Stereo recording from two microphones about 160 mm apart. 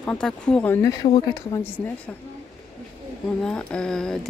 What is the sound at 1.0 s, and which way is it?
Speech, 20° left (ahead or behind).